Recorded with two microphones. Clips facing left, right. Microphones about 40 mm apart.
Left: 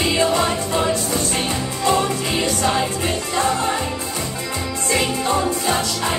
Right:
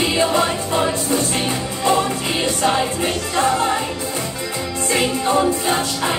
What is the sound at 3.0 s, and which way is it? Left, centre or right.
Speech, right.